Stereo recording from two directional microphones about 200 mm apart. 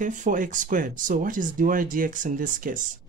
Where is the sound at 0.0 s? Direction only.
40° right (ahead or behind).